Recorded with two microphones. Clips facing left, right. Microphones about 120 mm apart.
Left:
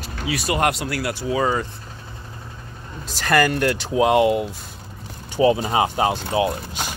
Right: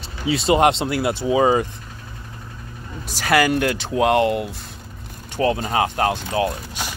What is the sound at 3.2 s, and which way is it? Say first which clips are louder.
Speech: right 1 dB; 10° right (ahead or behind).